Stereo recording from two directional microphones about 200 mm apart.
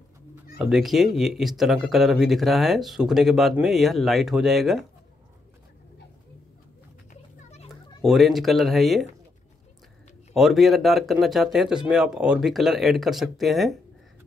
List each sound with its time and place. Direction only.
0.6 s speech: centre (ahead or behind)
8.0 s speech: centre (ahead or behind)
10.3 s speech: centre (ahead or behind)